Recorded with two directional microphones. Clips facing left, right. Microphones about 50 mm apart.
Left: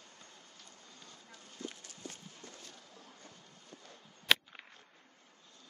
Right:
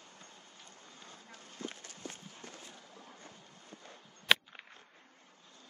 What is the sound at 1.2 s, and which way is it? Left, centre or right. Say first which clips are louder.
Run: right 1 dB; right.